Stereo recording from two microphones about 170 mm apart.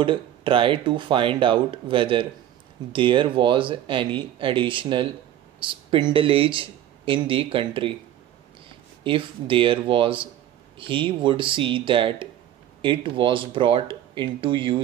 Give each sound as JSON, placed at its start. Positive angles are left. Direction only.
{"t": 0.0, "sound": "speech", "side_deg": -30}
{"t": 9.0, "sound": "speech", "side_deg": -30}